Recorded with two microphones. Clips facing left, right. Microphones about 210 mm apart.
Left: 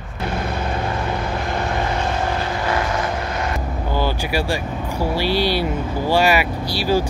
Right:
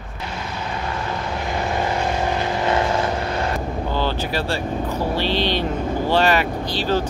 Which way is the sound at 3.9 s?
10° left (ahead or behind).